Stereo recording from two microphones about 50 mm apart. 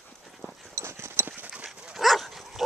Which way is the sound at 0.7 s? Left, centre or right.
Right.